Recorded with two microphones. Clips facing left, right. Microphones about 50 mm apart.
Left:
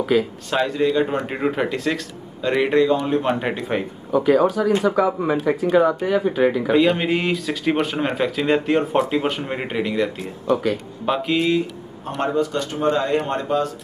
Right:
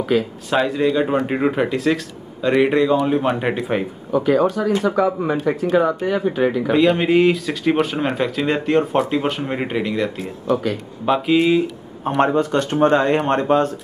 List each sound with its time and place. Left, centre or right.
0.0 s speech: centre
12.2 s speech: right